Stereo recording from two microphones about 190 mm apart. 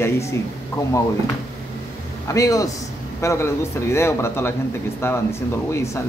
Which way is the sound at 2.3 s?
15° left (ahead or behind).